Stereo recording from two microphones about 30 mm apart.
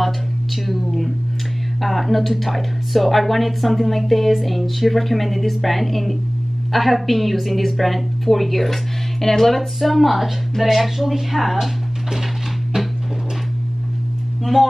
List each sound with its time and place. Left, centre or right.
0.7 s a sound: centre
1.8 s speech: centre
12.7 s music: centre
14.4 s speech: centre